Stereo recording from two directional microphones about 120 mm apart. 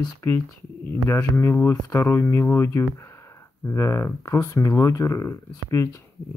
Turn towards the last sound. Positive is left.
turn(degrees=20)  # may be behind; listen again after turning